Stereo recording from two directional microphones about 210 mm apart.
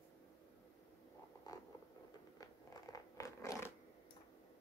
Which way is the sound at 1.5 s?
20° left (ahead or behind).